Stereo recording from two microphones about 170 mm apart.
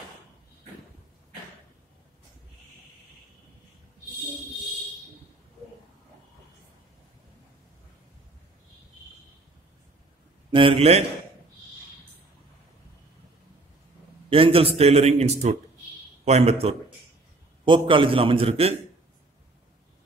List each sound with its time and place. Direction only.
10.5 s a man's voice: 30° right (ahead or behind)
14.3 s a man's voice: 35° right (ahead or behind)